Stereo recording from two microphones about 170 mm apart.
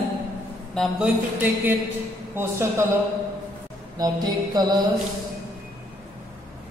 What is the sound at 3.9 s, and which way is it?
Mantra, 25° right (ahead or behind).